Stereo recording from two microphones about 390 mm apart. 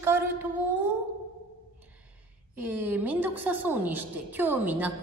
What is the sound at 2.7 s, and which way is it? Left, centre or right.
A woman's voice, centre.